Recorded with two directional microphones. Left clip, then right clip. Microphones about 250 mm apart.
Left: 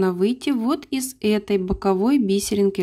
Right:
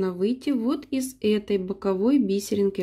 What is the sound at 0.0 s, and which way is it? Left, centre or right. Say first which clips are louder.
Speech: left 5 dB; left.